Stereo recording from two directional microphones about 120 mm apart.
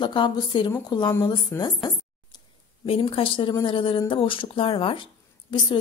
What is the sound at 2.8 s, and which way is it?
A woman's voice, 50° left (ahead or behind).